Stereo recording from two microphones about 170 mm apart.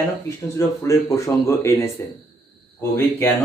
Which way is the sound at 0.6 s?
20° left (ahead or behind).